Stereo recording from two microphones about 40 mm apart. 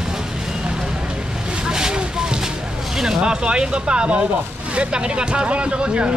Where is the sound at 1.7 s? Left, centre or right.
Centre.